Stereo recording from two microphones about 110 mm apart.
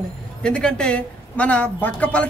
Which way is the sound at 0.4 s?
10° left (ahead or behind).